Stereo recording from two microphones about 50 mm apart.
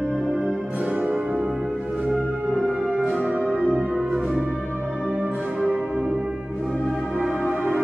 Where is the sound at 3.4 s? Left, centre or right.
Centre.